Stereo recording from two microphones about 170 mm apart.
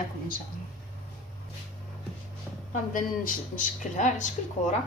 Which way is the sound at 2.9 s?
55° left (ahead or behind).